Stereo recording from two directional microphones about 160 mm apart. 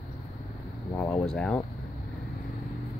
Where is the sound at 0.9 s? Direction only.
15° left (ahead or behind).